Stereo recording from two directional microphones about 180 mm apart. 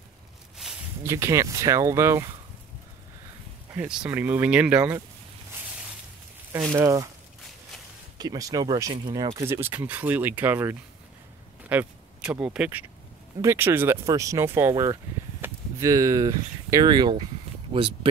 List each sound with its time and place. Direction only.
1.0 s speech: 15° right (ahead or behind)
3.7 s speech: 5° right (ahead or behind)
6.5 s speech: 15° right (ahead or behind)
8.2 s speech: 20° right (ahead or behind)